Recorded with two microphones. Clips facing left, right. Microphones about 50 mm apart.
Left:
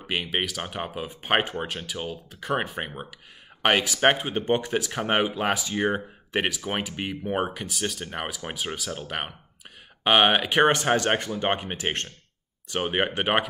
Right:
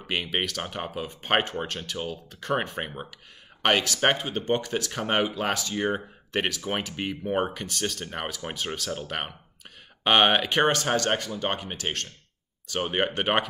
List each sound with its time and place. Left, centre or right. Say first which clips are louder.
0.0 s speech: left 1 dB; centre
10.7 s speech: left 2 dB; centre
12.8 s speech: left 1 dB; centre